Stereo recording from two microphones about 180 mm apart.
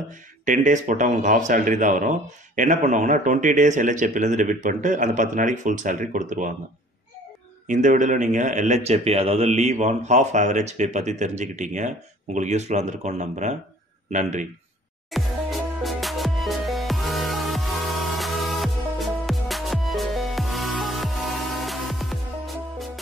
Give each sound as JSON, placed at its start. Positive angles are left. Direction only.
{"t": 0.5, "sound": "speech", "side_deg": -45}
{"t": 7.6, "sound": "a man's voice", "side_deg": -45}
{"t": 15.0, "sound": "music", "side_deg": 0}